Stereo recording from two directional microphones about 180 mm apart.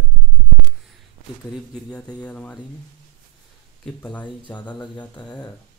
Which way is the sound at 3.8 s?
10° left (ahead or behind).